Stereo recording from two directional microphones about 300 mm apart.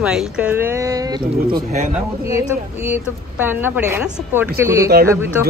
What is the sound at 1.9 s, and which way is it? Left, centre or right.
A woman's voice, centre.